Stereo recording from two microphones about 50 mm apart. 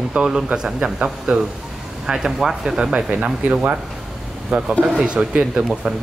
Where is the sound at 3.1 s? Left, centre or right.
Right.